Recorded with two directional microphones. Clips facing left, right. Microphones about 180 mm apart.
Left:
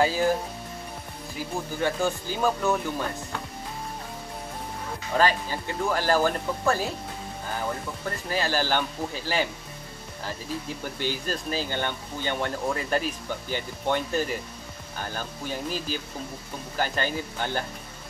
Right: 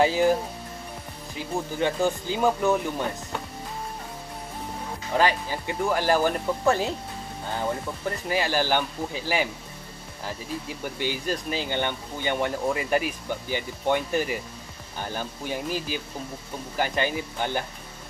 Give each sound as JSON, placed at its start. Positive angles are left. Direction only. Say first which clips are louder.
{"t": 0.0, "sound": "speech", "louder": "right 2 dB", "side_deg": -20}
{"t": 1.8, "sound": "speech", "louder": "right 2 dB", "side_deg": -20}
{"t": 5.1, "sound": "speech", "louder": "even", "side_deg": -15}
{"t": 8.3, "sound": "speech", "louder": "right 2 dB", "side_deg": -15}
{"t": 11.0, "sound": "speech", "louder": "right 2 dB", "side_deg": -15}